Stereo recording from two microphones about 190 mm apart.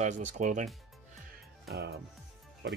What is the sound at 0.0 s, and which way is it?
Speech, 40° right (ahead or behind).